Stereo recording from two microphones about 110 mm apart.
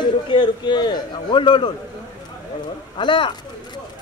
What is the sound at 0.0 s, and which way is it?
A man's voice, 40° left (ahead or behind).